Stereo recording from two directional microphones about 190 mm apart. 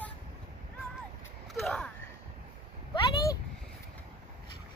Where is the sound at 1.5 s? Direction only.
5° left (ahead or behind).